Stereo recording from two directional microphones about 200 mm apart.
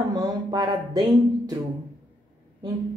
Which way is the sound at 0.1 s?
20° right (ahead or behind).